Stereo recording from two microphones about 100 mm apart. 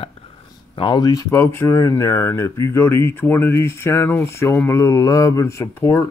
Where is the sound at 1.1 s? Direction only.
35° left (ahead or behind).